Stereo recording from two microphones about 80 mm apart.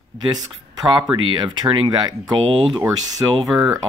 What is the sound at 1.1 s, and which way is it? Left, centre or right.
Speech, right.